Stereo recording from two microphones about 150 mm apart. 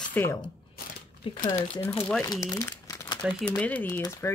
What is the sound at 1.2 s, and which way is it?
Speech, 30° left (ahead or behind).